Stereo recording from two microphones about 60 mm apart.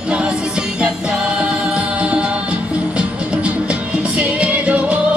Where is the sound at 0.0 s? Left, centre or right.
Centre.